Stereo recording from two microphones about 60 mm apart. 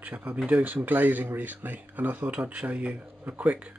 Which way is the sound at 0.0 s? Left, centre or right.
Right.